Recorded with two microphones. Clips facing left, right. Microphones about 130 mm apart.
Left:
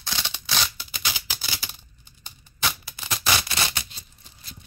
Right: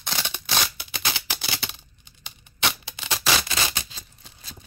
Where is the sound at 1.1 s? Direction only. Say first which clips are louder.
Right 5 dB; 65° right (ahead or behind).